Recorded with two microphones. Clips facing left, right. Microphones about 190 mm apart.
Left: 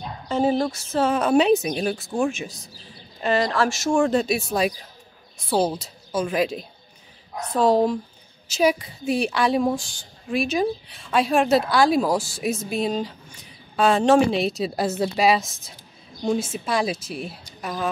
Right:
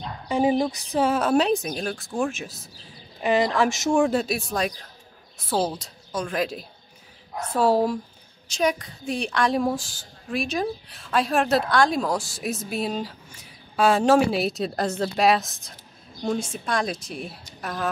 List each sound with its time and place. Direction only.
0.3 s speech: 15° right (ahead or behind)
4.1 s speech: centre (ahead or behind)
8.5 s speech: 5° left (ahead or behind)